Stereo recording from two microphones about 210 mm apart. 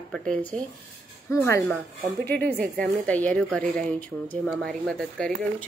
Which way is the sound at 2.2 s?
50° right (ahead or behind).